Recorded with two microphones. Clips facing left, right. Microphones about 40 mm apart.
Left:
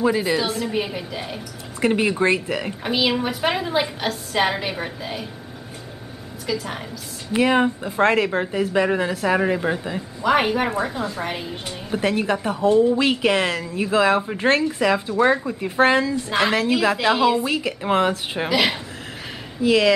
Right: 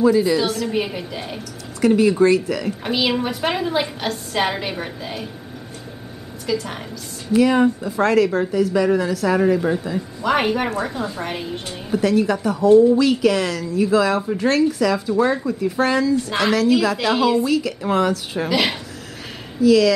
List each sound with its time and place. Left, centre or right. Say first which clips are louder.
0.7 s a woman's voice: right 2 dB; centre
1.8 s speech: right 5 dB; left
2.8 s a woman's voice: left 1 dB; centre
6.4 s a woman's voice: right 2 dB; centre
7.3 s speech: right 3 dB; left
10.2 s a woman's voice: left 1 dB; centre
11.9 s a woman's voice: right 3 dB; left
16.3 s speech: right 2 dB; centre
17.1 s speech: right 2 dB; centre
17.5 s speech: right 2 dB; left
18.5 s a woman's voice: even; centre
19.6 s a woman's voice: right 4 dB; left